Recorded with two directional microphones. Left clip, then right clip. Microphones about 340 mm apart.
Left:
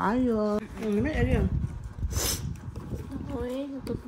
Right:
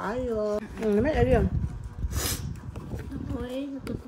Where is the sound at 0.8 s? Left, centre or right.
Right.